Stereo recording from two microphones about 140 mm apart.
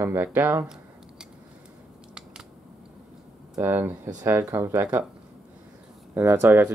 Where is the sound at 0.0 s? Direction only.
15° right (ahead or behind).